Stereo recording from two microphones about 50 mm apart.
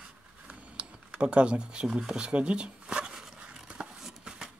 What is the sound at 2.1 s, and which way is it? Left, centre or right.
Speech, right.